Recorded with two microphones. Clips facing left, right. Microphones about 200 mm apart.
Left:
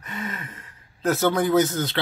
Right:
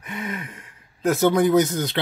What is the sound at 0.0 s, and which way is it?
Gasp, 15° right (ahead or behind).